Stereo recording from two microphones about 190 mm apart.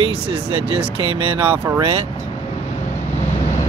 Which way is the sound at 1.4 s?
10° right (ahead or behind).